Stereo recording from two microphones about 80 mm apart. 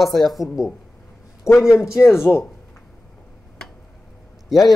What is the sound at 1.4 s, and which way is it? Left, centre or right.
Speech, left.